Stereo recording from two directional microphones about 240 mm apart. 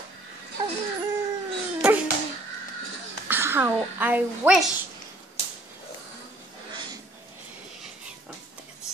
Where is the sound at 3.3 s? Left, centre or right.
Centre.